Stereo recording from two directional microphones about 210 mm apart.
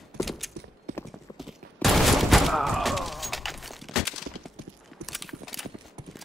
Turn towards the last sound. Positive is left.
turn(degrees=0)  # may be behind; listen again after turning